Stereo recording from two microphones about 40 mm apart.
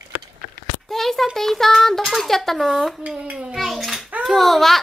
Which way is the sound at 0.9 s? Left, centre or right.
Centre.